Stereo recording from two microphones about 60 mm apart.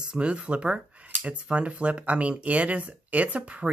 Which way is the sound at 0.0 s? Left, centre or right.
Centre.